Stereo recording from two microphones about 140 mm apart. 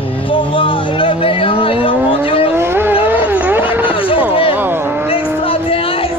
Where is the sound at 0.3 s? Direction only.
40° left (ahead or behind).